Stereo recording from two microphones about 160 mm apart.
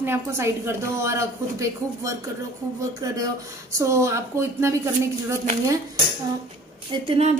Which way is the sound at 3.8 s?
20° right (ahead or behind).